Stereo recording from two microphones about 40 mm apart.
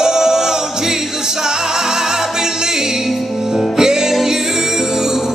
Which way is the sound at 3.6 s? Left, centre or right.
Centre.